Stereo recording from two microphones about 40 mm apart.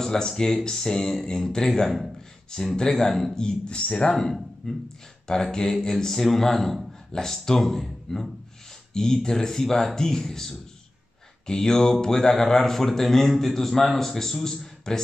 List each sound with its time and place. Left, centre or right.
0.0 s a man's voice: centre
3.3 s a man's voice: left
6.9 s a sound: centre
7.4 s a man's voice: centre
8.9 s a man's voice: centre